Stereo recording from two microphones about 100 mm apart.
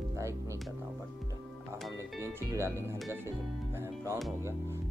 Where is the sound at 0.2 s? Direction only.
30° right (ahead or behind).